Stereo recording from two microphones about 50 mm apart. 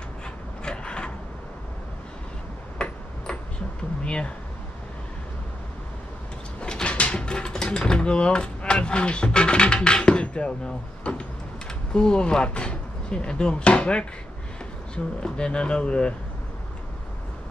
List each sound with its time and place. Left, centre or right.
0.7 s vehicle: centre
2.8 s tick-tock: centre
4.0 s a sound: left
6.6 s speech: centre
15.2 s speech: centre